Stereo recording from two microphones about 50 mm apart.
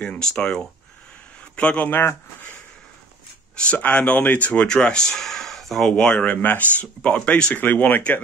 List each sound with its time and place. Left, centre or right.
0.0 s speech: centre
1.6 s speech: left
1.9 s speech: left
3.6 s speech: centre
4.6 s speech: centre
5.1 s speech: centre
5.9 s speech: left
7.5 s speech: left